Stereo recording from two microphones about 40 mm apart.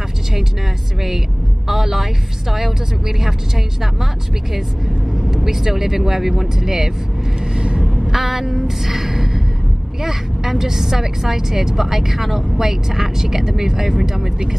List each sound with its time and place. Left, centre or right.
1.7 s a woman's voice: centre
5.1 s a woman's voice: centre
7.5 s vehicle: right
7.8 s a sound: centre
10.0 s a woman's voice: centre